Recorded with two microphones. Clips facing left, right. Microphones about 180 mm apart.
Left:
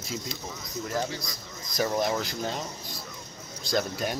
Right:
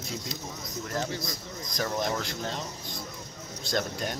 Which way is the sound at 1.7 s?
10° left (ahead or behind).